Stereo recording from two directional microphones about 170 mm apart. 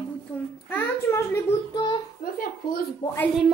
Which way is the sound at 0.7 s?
15° left (ahead or behind).